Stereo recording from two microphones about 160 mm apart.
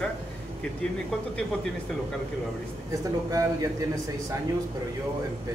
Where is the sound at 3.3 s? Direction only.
20° right (ahead or behind).